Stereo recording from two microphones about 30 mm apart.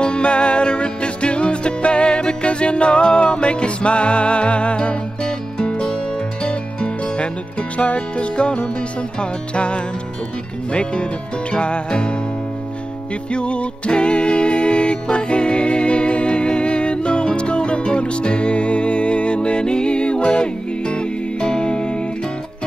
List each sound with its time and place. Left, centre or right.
0.0 s music: left
5.2 s music: left
13.3 s music: left